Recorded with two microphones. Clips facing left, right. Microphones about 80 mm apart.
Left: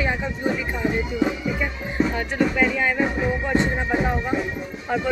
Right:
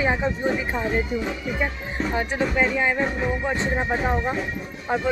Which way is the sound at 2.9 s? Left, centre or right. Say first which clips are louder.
Left 2 dB; centre.